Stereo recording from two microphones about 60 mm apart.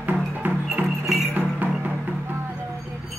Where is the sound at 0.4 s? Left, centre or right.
Right.